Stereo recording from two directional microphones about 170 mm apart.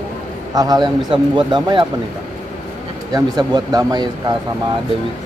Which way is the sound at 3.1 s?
20° right (ahead or behind).